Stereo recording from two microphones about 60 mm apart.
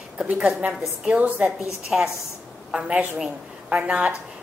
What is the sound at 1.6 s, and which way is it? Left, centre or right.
Speech, centre.